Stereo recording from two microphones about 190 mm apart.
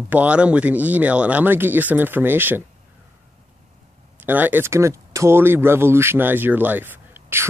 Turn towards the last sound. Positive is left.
turn(degrees=-10)  # may be behind; listen again after turning